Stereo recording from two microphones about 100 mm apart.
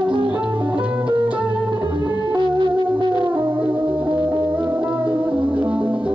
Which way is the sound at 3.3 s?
20° right (ahead or behind).